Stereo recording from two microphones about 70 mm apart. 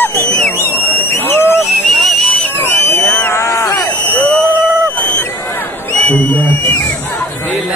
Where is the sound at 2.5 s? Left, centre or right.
Left.